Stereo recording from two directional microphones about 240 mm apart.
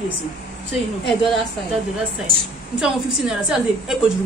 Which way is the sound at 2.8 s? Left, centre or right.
Centre.